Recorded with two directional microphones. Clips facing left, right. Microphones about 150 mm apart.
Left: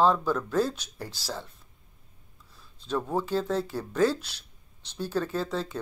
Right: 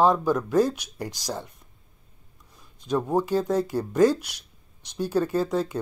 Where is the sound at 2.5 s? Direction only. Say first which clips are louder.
Right 4 dB; 15° right (ahead or behind).